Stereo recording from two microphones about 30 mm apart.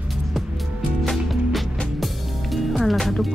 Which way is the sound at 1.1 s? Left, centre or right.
Centre.